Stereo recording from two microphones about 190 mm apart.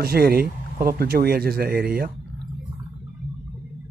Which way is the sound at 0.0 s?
55° right (ahead or behind).